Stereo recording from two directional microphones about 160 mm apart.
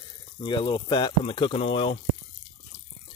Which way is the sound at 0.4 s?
30° left (ahead or behind).